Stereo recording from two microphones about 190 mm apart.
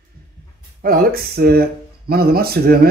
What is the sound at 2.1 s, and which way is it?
Speech, 55° right (ahead or behind).